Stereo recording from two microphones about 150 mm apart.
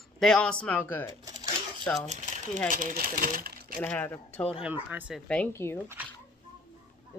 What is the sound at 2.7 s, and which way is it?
Speech, 70° right (ahead or behind).